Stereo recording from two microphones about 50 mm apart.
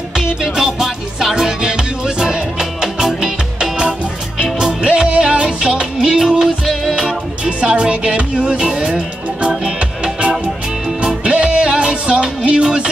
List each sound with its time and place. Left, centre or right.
0.1 s music: centre
7.4 s music: centre
11.0 s music: centre